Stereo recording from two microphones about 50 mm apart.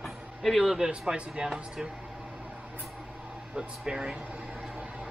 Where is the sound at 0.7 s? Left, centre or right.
Centre.